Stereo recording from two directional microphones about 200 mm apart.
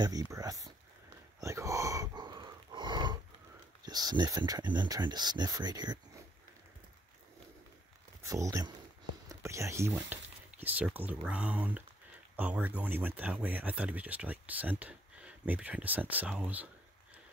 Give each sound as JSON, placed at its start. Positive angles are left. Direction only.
{"t": 0.0, "sound": "speech", "side_deg": -20}
{"t": 1.4, "sound": "a sound", "side_deg": -15}
{"t": 3.8, "sound": "speech", "side_deg": -20}
{"t": 8.2, "sound": "speech", "side_deg": -15}